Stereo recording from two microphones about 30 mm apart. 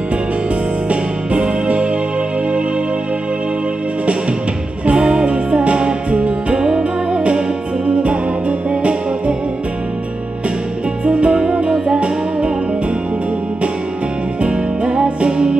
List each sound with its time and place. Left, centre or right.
0.8 s music: right
4.8 s music: right
11.1 s music: right
14.4 s music: right